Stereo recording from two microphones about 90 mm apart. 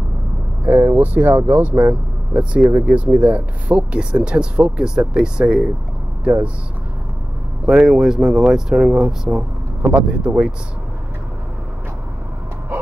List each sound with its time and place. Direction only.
0.7 s speech: 20° right (ahead or behind)
7.6 s speech: 10° right (ahead or behind)